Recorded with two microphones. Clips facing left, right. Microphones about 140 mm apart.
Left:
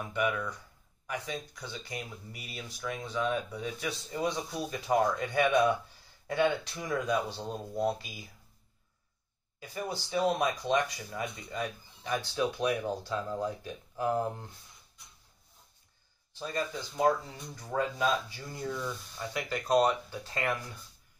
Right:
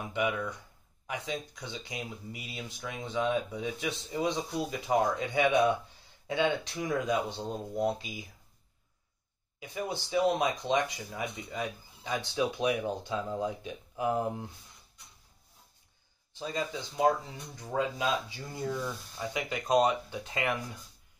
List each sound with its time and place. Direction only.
0.0 s speech: 20° right (ahead or behind)
9.6 s speech: 20° right (ahead or behind)
16.3 s speech: 15° right (ahead or behind)
18.8 s speech: 15° right (ahead or behind)